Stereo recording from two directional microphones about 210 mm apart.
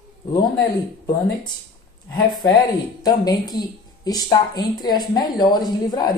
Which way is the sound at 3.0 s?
20° left (ahead or behind).